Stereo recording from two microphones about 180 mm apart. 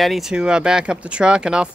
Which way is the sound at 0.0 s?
Centre (ahead or behind).